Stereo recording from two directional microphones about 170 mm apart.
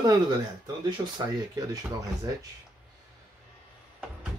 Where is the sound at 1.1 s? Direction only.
20° right (ahead or behind).